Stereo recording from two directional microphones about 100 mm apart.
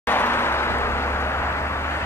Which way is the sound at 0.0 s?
20° left (ahead or behind).